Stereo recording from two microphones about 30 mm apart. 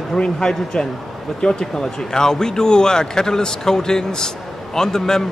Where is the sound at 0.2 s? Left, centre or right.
Left.